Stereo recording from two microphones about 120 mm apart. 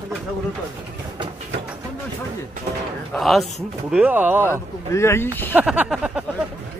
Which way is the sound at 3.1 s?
Centre (ahead or behind).